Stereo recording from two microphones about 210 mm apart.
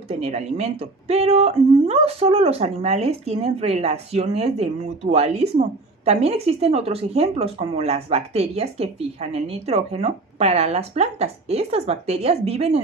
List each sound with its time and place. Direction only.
0.2 s speech: 30° right (ahead or behind)